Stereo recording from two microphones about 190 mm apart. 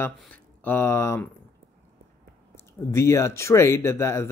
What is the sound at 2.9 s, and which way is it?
Speech, 15° left (ahead or behind).